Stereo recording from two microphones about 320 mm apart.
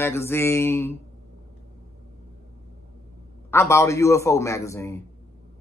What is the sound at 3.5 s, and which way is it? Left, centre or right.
A man's voice, centre.